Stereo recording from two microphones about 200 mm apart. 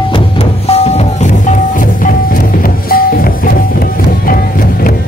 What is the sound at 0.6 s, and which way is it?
Music, 30° left (ahead or behind).